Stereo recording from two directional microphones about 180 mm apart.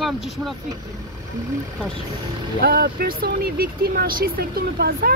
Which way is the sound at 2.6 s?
60° right (ahead or behind).